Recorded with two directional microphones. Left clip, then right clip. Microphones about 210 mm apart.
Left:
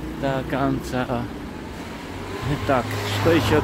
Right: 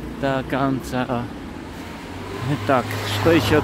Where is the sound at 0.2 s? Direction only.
25° right (ahead or behind).